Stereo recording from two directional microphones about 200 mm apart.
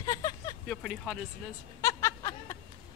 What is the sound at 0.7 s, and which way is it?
Speech, centre (ahead or behind).